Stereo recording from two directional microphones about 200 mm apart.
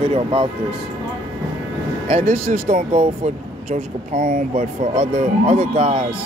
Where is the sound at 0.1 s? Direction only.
25° right (ahead or behind).